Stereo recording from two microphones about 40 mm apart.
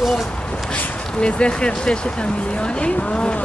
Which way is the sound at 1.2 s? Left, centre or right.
Left.